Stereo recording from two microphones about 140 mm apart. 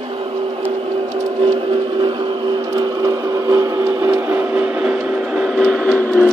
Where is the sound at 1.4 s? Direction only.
35° right (ahead or behind).